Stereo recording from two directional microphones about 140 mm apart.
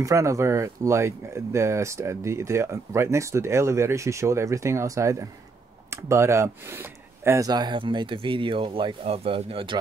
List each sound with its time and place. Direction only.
0.0 s speech: 20° right (ahead or behind); by 9.8 s 40° right (ahead or behind)